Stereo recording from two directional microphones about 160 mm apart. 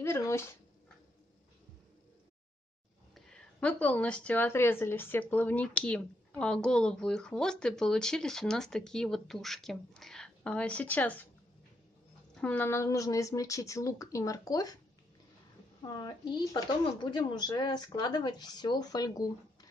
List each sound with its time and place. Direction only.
0.0 s speech: 15° left (ahead or behind)
3.2 s speech: 5° left (ahead or behind)
12.4 s speech: 10° left (ahead or behind)
15.8 s speech: 25° left (ahead or behind)